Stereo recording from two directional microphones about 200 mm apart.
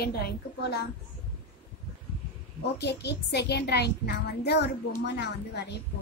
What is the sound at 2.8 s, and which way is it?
A woman's voice, 55° left (ahead or behind).